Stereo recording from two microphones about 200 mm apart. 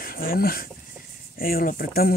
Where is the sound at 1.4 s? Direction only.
45° left (ahead or behind).